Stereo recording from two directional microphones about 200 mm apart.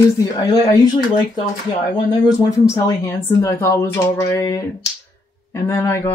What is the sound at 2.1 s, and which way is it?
Speech, 15° left (ahead or behind).